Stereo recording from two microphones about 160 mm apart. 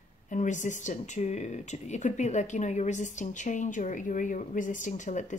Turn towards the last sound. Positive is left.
turn(degrees=50)  # may be behind; listen again after turning